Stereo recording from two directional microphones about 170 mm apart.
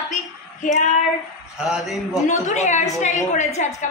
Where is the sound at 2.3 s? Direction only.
40° left (ahead or behind).